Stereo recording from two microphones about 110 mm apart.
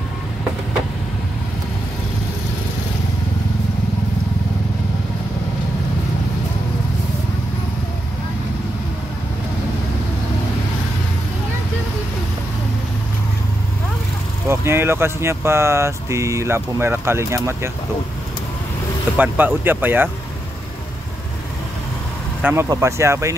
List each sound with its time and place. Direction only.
14.5 s speech: 25° right (ahead or behind)
19.1 s speech: 15° right (ahead or behind)
22.4 s speech: 15° right (ahead or behind)